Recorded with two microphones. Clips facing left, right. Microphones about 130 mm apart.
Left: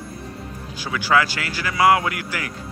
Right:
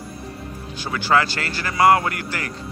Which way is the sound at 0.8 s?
5° left (ahead or behind).